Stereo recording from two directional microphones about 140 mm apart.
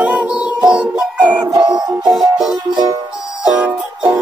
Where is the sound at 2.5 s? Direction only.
30° right (ahead or behind).